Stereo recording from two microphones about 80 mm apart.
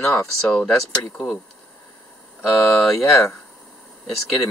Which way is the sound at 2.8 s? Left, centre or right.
Centre.